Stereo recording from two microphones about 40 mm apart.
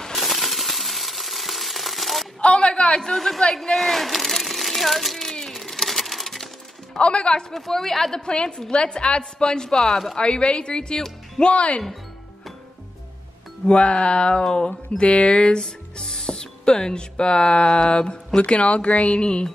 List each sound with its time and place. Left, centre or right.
0.1 s coin: centre
2.4 s a sound: left
3.0 s speech: centre
3.7 s a sound: centre
5.6 s music: centre
7.0 s a woman's voice: left
7.5 s a woman's voice: centre
10.1 s a woman's voice: left
13.7 s a woman's voice: left
14.4 s speech: centre
15.0 s a woman's voice: left
15.4 s a woman's voice: centre